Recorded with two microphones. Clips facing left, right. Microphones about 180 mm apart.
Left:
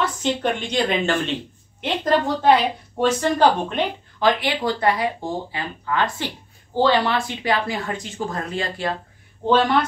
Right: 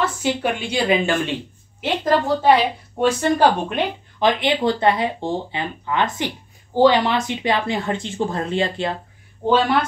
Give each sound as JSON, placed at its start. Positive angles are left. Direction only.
{"t": 0.0, "sound": "a woman's voice", "side_deg": -10}
{"t": 4.3, "sound": "speech", "side_deg": -20}